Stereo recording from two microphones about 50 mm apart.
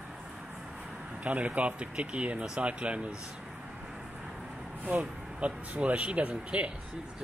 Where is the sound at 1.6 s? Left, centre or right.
Right.